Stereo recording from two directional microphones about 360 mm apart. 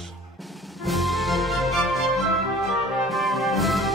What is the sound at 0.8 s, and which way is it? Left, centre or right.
Music, centre.